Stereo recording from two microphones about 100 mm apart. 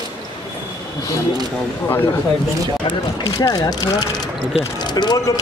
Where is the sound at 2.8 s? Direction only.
40° left (ahead or behind).